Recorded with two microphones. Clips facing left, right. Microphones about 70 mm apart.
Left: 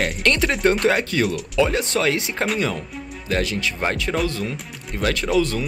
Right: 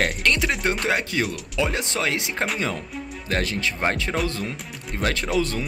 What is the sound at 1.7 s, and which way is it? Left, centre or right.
Speech, right.